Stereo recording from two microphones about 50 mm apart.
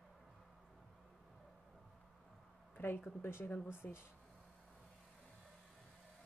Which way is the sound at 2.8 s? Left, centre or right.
Left.